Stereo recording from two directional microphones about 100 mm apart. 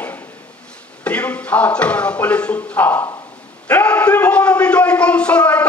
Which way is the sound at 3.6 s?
15° left (ahead or behind).